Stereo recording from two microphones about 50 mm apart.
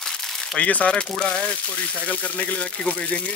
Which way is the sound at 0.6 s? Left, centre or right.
Left.